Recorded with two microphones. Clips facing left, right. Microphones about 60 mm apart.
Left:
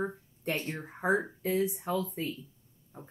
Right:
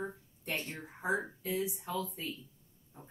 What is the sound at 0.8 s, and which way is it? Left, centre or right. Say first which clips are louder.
Speech: left 6 dB; left.